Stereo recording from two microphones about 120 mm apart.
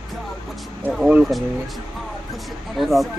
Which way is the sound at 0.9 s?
5° right (ahead or behind).